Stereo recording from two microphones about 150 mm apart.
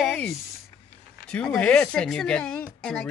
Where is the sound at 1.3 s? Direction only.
10° left (ahead or behind).